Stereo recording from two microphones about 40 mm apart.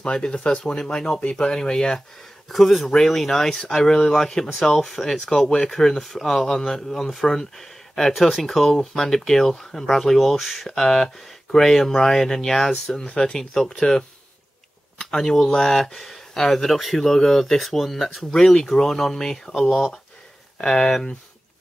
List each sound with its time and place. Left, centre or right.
0.0 s speech: left
2.5 s speech: centre
10.1 s speech: centre
10.7 s speech: centre
12.9 s speech: left
15.1 s speech: centre
20.6 s speech: left